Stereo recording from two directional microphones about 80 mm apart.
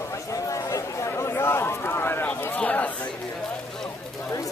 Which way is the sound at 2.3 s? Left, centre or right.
Centre.